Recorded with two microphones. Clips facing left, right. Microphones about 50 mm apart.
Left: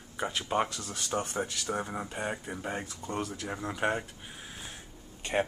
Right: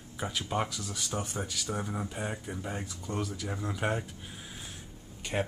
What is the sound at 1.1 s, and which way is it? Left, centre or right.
Speech, centre.